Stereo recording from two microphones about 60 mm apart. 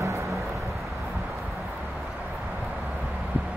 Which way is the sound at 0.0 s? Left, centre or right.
Right.